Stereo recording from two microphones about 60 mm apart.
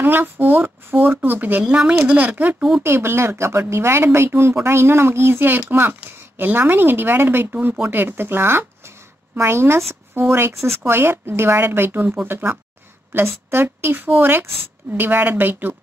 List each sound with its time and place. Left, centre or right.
0.0 s speech: right
1.6 s speech: centre
2.8 s speech: right